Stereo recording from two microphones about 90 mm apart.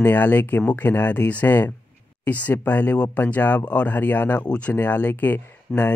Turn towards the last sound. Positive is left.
turn(degrees=25)  # may be behind; listen again after turning